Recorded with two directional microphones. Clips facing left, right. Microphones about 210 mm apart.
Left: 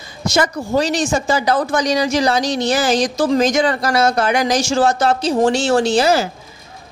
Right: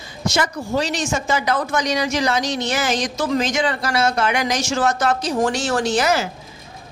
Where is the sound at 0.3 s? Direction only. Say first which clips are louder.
Left 4 dB; 40° left (ahead or behind).